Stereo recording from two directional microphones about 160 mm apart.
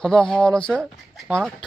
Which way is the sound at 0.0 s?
5° left (ahead or behind).